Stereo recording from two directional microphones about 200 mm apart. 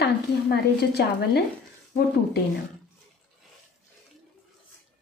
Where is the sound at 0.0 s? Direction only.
55° left (ahead or behind).